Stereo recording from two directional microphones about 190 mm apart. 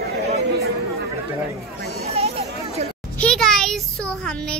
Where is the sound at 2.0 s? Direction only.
35° right (ahead or behind).